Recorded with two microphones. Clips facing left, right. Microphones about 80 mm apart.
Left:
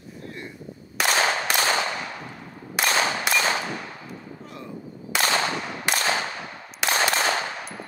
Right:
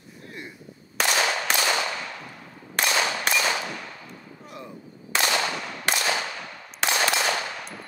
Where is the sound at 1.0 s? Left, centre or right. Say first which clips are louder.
Left 2 dB; left.